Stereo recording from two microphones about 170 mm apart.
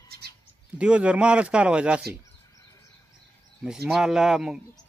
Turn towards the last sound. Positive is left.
turn(degrees=-5)  # may be behind; listen again after turning